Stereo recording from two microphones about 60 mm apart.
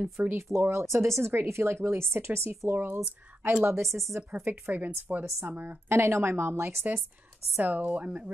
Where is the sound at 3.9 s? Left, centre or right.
Centre.